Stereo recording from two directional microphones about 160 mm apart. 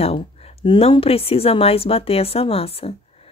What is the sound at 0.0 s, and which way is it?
A woman's voice, 35° left (ahead or behind).